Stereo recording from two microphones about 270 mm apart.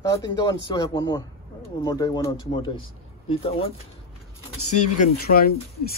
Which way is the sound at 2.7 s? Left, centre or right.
Left.